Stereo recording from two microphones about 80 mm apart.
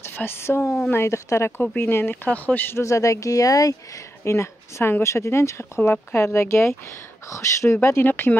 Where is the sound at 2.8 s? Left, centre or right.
Left.